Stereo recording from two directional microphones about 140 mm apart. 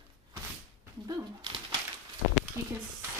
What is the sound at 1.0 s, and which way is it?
Dog, 30° right (ahead or behind).